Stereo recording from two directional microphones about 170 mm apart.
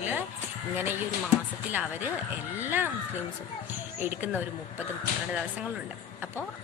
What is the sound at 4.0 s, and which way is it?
Speech, 10° right (ahead or behind).